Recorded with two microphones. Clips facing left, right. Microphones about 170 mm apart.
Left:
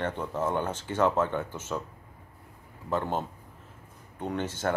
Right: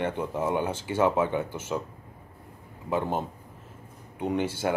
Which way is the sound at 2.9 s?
10° right (ahead or behind).